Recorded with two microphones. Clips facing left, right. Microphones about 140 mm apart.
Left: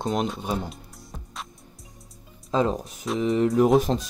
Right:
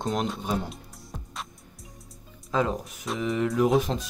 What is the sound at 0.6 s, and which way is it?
Music, centre (ahead or behind).